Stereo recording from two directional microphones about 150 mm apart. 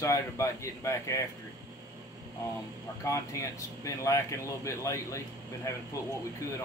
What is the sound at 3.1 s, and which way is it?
Speech, 20° left (ahead or behind).